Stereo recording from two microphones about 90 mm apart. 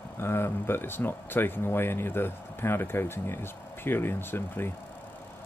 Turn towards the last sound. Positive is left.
turn(degrees=25)  # may be behind; listen again after turning